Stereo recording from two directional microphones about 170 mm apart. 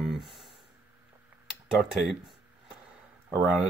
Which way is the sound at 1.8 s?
Centre (ahead or behind).